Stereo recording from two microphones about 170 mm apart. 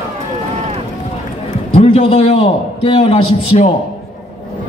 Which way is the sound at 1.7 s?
35° left (ahead or behind).